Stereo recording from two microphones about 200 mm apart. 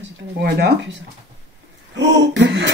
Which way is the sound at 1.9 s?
60° right (ahead or behind).